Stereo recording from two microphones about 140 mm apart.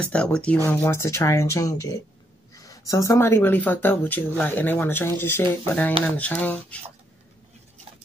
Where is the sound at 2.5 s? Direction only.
25° left (ahead or behind).